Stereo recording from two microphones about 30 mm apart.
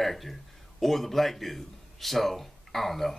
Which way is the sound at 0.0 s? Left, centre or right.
Centre.